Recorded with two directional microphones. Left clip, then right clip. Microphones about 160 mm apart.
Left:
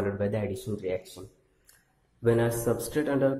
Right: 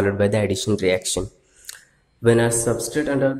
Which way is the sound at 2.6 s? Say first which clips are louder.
Right 6 dB; 5° left (ahead or behind).